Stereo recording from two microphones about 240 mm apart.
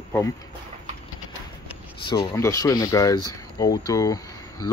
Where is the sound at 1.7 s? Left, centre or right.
Centre.